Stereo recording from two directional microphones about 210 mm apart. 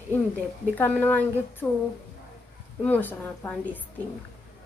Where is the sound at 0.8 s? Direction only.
10° left (ahead or behind).